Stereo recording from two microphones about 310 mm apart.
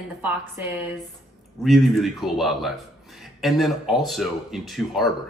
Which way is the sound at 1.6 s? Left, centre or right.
Centre.